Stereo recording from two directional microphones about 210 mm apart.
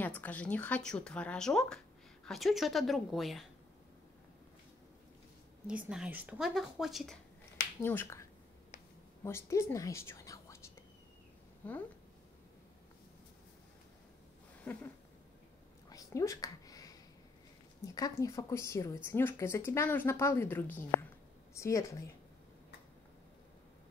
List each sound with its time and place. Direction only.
0.0 s speech: 10° left (ahead or behind)
5.7 s speech: 5° right (ahead or behind)
7.8 s a woman's voice: 10° left (ahead or behind)
11.6 s speech: 10° left (ahead or behind)
14.6 s a sound: 5° left (ahead or behind)
15.9 s a sound: 15° left (ahead or behind)
17.8 s speech: 15° left (ahead or behind)